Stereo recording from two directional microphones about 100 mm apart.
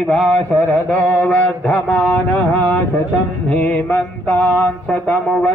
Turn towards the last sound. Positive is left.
turn(degrees=10)  # may be behind; listen again after turning